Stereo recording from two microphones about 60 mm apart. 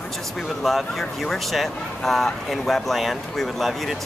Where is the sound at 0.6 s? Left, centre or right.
Centre.